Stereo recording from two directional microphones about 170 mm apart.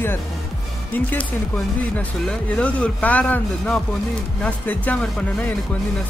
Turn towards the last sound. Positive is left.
turn(degrees=10)  # may be behind; listen again after turning